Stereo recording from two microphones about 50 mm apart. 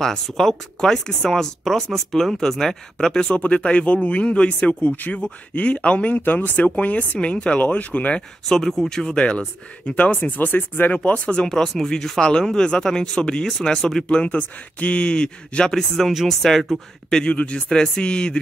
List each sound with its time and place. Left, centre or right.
0.0 s speech: centre
3.3 s speech: left
8.5 s speech: centre; by 11.0 s left
11.1 s speech: left
11.4 s speech: centre
14.0 s speech: left
16.1 s speech: centre
17.1 s speech: left